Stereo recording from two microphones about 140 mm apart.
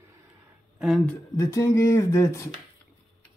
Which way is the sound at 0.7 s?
Centre (ahead or behind).